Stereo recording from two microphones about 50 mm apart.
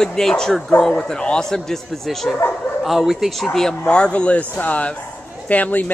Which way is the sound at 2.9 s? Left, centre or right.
Centre.